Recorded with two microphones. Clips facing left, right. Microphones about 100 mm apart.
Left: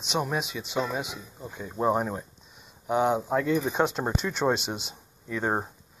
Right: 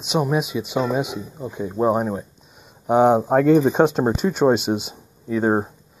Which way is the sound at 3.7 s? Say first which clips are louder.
Right 9 dB; 20° right (ahead or behind).